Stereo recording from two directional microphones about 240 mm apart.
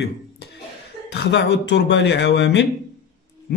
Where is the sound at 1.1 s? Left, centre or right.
Left.